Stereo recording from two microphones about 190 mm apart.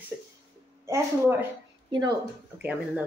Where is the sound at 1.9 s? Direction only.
25° right (ahead or behind).